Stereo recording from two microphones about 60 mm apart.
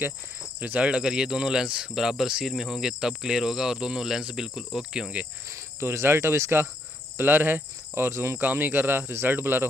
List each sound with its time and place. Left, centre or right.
0.6 s speech: right
5.5 s cricket: right
7.2 s speech: right
8.4 s speech: right